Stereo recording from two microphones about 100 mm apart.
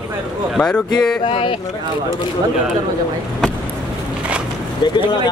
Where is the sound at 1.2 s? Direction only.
60° left (ahead or behind).